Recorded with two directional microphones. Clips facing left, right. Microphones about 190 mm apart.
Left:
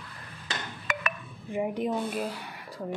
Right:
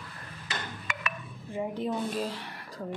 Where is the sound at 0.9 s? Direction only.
45° left (ahead or behind).